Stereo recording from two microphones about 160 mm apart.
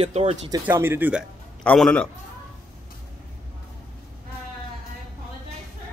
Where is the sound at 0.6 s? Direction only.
15° right (ahead or behind).